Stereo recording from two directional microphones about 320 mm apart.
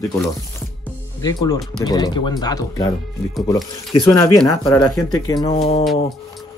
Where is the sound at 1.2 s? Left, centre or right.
Centre.